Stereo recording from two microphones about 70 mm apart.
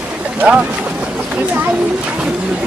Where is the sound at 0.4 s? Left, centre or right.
Centre.